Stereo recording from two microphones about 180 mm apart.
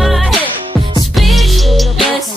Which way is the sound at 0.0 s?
Centre (ahead or behind).